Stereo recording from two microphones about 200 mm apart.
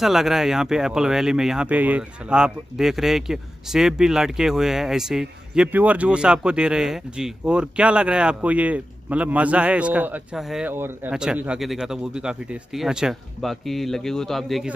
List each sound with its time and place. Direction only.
0.0 s speech: centre (ahead or behind)